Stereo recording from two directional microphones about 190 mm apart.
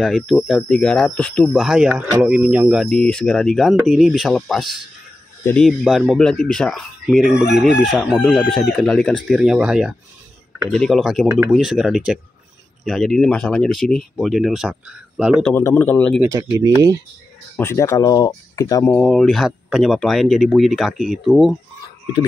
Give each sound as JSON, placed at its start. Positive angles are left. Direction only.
{"t": 0.0, "sound": "speech", "side_deg": 0}
{"t": 15.5, "sound": "speech", "side_deg": 10}
{"t": 16.2, "sound": "speech", "side_deg": -15}
{"t": 17.6, "sound": "speech", "side_deg": 15}
{"t": 18.9, "sound": "speech", "side_deg": 0}